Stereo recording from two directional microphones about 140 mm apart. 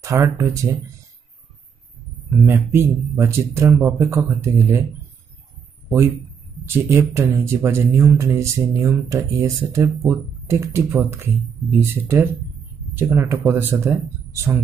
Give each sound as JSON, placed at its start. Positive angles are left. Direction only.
{"t": 0.0, "sound": "speech", "side_deg": -25}
{"t": 2.4, "sound": "speech", "side_deg": -15}
{"t": 6.7, "sound": "speech", "side_deg": -15}